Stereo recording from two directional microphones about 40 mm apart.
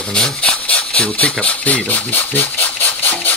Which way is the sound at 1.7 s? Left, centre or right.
Left.